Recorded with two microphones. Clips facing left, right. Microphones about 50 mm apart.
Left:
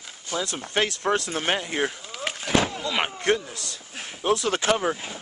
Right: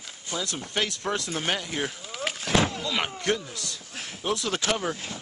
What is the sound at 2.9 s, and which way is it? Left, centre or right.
Speech, centre.